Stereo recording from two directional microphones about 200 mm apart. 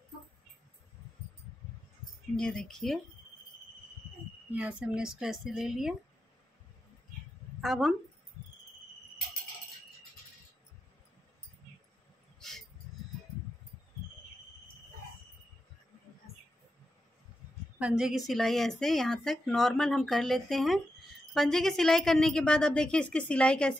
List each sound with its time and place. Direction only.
2.3 s a woman's voice: 5° left (ahead or behind)
4.6 s a woman's voice: 5° right (ahead or behind)
7.6 s a woman's voice: centre (ahead or behind)
12.4 s a sound: centre (ahead or behind)
17.7 s a woman's voice: 5° right (ahead or behind)